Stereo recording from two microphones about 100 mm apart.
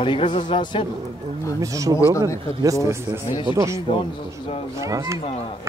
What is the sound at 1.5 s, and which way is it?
Speech, 35° right (ahead or behind).